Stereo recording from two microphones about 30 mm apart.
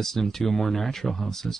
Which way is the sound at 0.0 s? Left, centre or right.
Centre.